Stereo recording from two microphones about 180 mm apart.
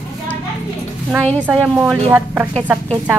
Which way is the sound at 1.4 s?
5° right (ahead or behind).